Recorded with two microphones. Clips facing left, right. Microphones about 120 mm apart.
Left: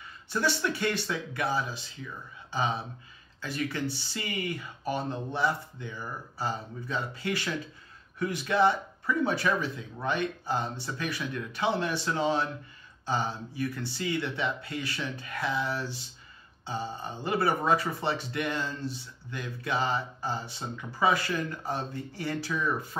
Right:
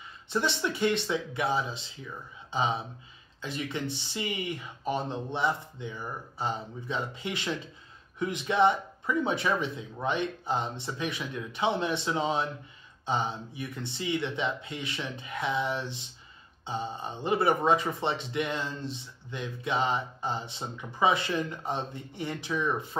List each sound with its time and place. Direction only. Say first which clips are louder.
0.3 s speech: even; 25° right (ahead or behind)